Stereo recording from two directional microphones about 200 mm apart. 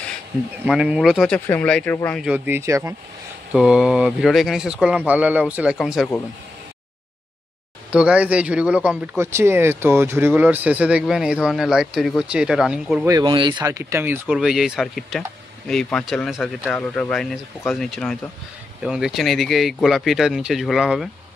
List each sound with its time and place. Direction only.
0.7 s speech: 5° right (ahead or behind)
2.2 s a man's voice: 10° right (ahead or behind)
7.9 s a man's voice: 5° right (ahead or behind)
13.1 s a man's voice: 25° right (ahead or behind); by 21.1 s centre (ahead or behind)